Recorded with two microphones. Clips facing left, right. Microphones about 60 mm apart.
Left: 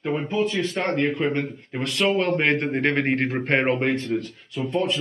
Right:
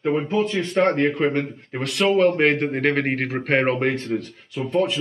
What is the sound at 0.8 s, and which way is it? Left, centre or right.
Speech, right.